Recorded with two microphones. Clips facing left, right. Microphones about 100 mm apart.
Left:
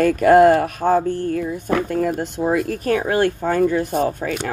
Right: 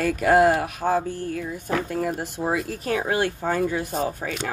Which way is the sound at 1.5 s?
50° left (ahead or behind).